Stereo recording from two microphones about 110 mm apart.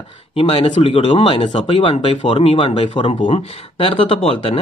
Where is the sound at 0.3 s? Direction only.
60° left (ahead or behind).